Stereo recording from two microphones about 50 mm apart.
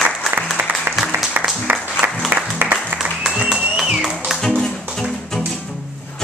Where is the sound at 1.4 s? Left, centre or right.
Right.